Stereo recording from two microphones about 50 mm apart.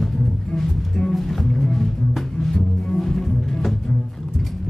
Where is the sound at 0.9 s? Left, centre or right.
Centre.